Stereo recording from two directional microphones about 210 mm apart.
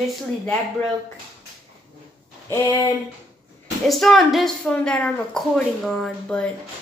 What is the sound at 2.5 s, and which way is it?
Speech, 15° left (ahead or behind).